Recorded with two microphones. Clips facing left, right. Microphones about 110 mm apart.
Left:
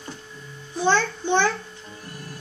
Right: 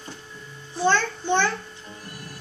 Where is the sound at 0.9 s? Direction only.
15° left (ahead or behind).